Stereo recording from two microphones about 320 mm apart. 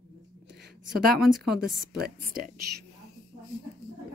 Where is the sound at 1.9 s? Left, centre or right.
Right.